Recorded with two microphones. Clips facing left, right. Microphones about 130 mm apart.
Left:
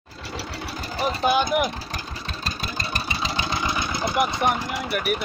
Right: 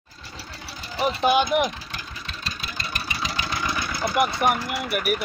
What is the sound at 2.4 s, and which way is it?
Vehicle, 40° left (ahead or behind).